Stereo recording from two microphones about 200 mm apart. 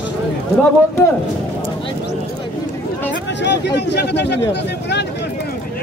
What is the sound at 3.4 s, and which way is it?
Speech, 60° left (ahead or behind).